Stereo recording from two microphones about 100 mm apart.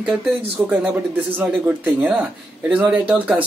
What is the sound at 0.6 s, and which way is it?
A man's voice, 20° right (ahead or behind).